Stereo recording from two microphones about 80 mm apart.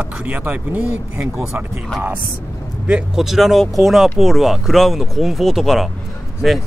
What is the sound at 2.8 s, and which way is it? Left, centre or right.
Speech, centre.